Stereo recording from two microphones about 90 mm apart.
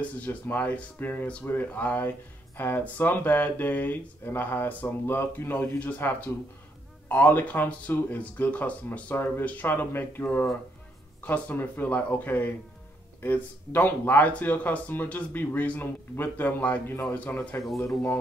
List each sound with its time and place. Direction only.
0.0 s speech: 15° left (ahead or behind)
17.6 s speech: centre (ahead or behind)